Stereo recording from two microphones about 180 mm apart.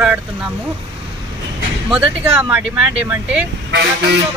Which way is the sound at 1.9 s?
5° right (ahead or behind).